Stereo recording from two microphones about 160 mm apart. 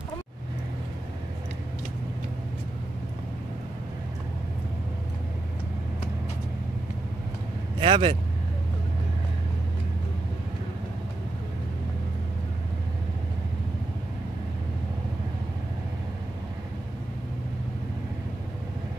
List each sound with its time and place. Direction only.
7.8 s speech: 35° right (ahead or behind)